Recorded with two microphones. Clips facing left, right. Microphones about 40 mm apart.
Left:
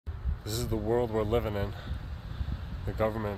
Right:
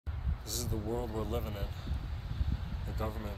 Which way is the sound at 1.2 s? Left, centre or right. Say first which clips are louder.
Left 9 dB; left.